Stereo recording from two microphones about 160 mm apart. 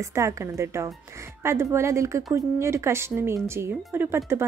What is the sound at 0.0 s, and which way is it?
A woman's voice, 20° right (ahead or behind).